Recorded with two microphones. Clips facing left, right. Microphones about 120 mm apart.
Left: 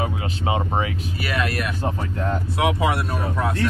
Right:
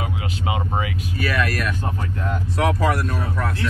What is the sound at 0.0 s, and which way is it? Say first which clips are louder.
Speech: left 2 dB; 30° left (ahead or behind).